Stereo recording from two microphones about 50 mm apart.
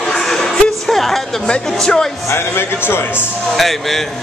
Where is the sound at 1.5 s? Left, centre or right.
Centre.